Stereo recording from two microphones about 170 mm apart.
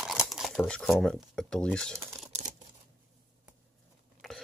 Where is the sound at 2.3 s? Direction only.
40° right (ahead or behind).